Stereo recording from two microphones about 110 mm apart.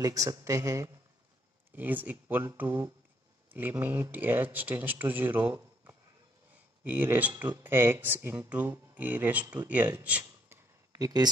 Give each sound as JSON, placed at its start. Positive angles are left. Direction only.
{"t": 0.0, "sound": "a man's voice", "side_deg": -30}
{"t": 1.7, "sound": "speech", "side_deg": -15}
{"t": 11.0, "sound": "speech", "side_deg": -35}